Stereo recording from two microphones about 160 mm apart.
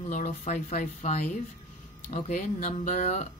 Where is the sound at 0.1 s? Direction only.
50° left (ahead or behind).